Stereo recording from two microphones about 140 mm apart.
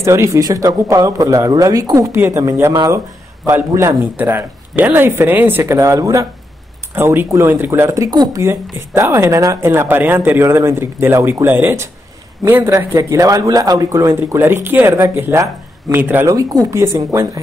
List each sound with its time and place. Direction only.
0.0 s speech: 20° right (ahead or behind)
16.3 s speech: 25° right (ahead or behind)